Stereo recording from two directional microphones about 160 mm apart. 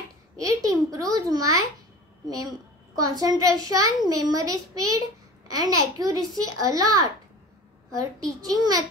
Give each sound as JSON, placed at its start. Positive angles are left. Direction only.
{"t": 0.4, "sound": "a child's voice", "side_deg": -20}